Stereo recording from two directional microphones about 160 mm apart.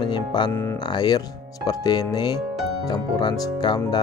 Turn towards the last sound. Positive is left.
turn(degrees=25)  # may be behind; listen again after turning